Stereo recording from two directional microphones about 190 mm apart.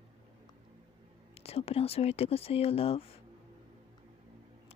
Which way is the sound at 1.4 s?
30° left (ahead or behind).